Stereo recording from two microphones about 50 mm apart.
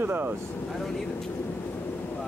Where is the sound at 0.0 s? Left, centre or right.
Right.